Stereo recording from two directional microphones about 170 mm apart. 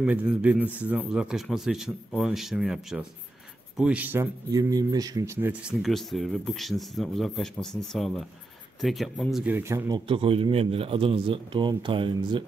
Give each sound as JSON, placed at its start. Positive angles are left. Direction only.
{"t": 0.0, "sound": "speech", "side_deg": -5}